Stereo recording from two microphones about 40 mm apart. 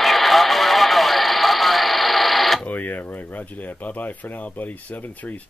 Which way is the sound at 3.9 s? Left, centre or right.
Left.